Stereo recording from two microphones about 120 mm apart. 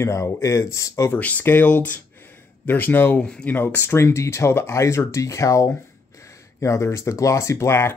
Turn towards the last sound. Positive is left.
turn(degrees=20)  # may be behind; listen again after turning